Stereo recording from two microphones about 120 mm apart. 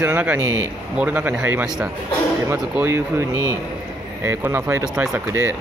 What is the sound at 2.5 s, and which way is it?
Speech, 20° right (ahead or behind).